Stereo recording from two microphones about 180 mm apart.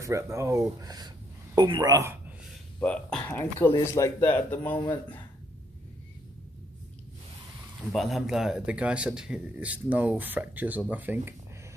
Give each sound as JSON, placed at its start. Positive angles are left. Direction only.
{"t": 0.0, "sound": "speech", "side_deg": -15}
{"t": 2.8, "sound": "speech", "side_deg": 5}
{"t": 7.9, "sound": "speech", "side_deg": 0}